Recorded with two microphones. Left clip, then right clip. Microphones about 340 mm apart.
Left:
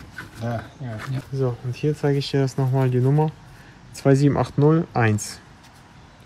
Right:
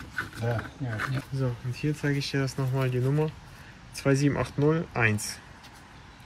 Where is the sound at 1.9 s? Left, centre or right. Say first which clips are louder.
Left 8 dB; left.